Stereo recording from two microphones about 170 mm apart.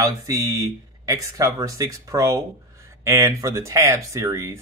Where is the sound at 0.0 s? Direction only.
20° right (ahead or behind).